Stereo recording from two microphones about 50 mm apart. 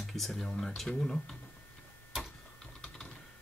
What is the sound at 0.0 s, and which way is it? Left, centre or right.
Speech, centre.